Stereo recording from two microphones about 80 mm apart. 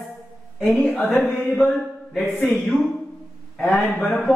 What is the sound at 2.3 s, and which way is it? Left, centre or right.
A woman's voice, centre.